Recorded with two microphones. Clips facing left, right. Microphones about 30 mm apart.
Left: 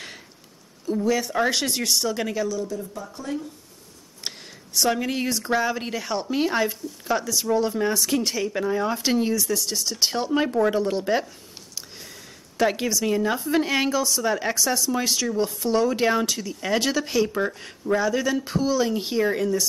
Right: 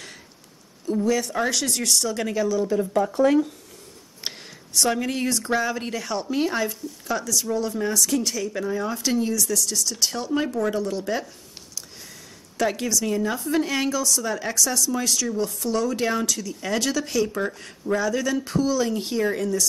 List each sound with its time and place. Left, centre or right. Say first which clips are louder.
0.8 s speech: even; centre
1.5 s speech: even; left
2.2 s a woman's voice: right 3 dB; centre
2.9 s speech: right 12 dB; right
4.2 s a sound: right 1 dB; centre
4.7 s a woman's voice: even; centre; by 11.2 s left
12.5 s a woman's voice: left 1 dB; centre